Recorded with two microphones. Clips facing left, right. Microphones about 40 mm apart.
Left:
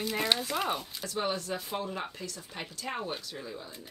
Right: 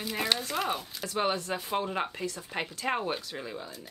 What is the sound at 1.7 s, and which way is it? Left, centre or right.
Speech, right.